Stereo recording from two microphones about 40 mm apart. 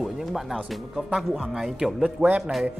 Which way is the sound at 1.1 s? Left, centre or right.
Centre.